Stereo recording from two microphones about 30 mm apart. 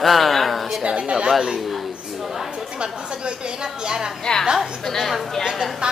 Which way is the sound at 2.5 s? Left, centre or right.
Right.